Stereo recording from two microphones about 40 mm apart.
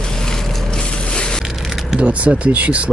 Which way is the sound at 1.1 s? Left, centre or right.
Left.